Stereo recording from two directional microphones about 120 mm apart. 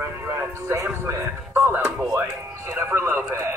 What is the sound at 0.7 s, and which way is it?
Speech, 25° right (ahead or behind).